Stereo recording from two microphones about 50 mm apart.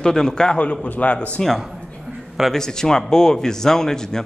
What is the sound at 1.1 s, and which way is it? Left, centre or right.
Speech, left.